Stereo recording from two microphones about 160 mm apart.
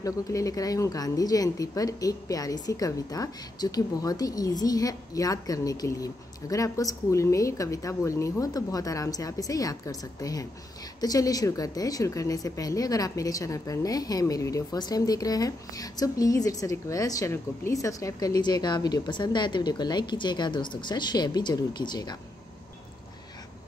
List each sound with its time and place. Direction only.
0.0 s a woman's voice: 20° left (ahead or behind)